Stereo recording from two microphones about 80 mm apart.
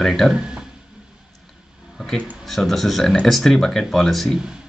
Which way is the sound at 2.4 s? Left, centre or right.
Centre.